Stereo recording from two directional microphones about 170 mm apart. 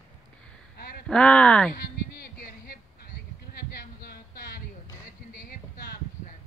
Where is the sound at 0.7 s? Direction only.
65° left (ahead or behind).